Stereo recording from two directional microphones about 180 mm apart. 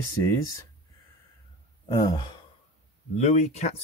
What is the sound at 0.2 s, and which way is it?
Speech, 15° left (ahead or behind).